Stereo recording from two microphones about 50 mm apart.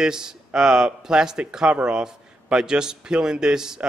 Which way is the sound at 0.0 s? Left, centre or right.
Centre.